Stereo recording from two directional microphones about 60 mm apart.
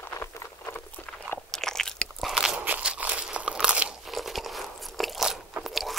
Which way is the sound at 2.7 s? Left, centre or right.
Right.